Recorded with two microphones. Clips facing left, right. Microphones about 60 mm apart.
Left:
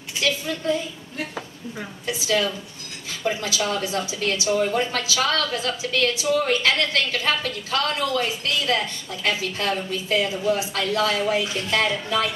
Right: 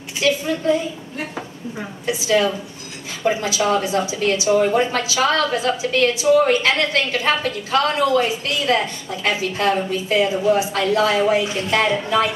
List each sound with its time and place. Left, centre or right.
0.2 s a woman's voice: right